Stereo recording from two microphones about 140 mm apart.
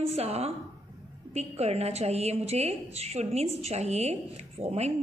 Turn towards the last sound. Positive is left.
turn(degrees=-50)  # may be behind; listen again after turning